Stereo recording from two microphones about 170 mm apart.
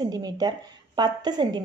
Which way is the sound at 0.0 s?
20° right (ahead or behind).